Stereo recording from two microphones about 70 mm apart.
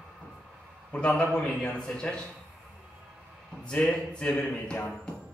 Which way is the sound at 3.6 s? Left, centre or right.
Centre.